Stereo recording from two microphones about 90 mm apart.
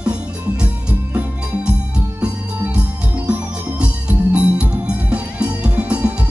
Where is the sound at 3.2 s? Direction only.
10° right (ahead or behind).